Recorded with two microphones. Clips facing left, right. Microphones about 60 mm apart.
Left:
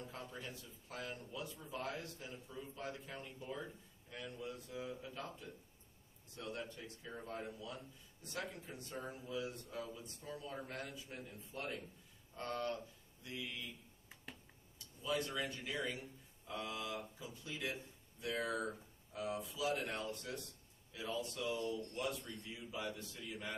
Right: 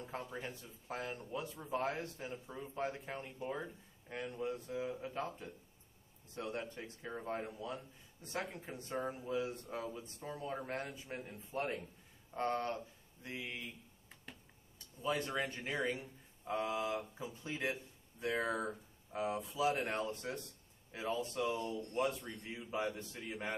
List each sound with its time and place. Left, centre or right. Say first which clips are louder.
0.3 s speech: right 4 dB; right
2.4 s a man's voice: right 3 dB; right
2.7 s speech: right 8 dB; right
15.0 s speech: right 3 dB; right